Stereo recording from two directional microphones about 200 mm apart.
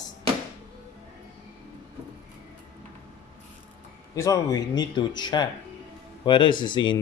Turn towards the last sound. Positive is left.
turn(degrees=25)  # may be behind; listen again after turning